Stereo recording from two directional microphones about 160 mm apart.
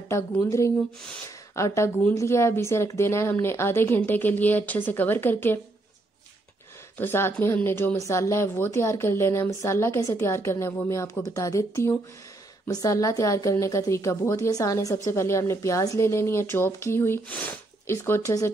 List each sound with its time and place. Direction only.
0.1 s speech: 20° left (ahead or behind)
7.0 s a woman's voice: 15° left (ahead or behind)